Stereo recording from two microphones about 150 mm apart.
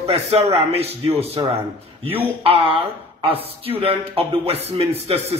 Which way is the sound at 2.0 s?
40° right (ahead or behind).